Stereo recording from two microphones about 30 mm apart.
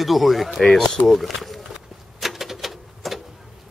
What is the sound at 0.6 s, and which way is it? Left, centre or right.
Speech, centre.